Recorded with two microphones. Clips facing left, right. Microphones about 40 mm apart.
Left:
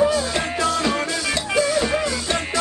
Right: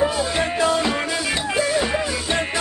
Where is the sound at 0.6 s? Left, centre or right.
Centre.